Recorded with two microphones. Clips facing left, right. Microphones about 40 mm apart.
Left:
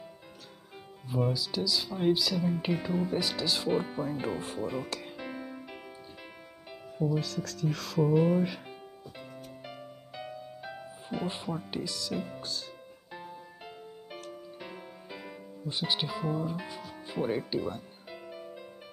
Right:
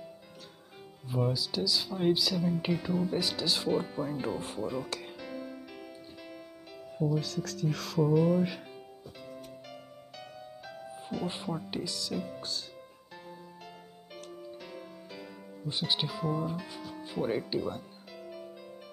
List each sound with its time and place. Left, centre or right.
1.0 s speech: centre
2.7 s speech: centre
3.1 s speech: centre
3.7 s speech: centre
4.6 s speech: centre
5.1 s music: centre
7.0 s speech: centre
8.0 s speech: centre
9.1 s music: centre
11.2 s speech: centre
13.1 s music: centre
15.7 s speech: centre